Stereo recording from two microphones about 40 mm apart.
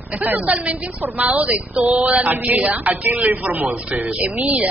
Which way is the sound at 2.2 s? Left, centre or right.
Right.